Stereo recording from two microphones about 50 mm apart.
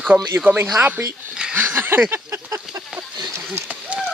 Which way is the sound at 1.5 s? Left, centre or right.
Right.